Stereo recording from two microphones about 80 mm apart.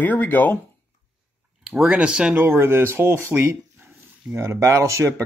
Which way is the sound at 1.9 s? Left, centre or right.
Centre.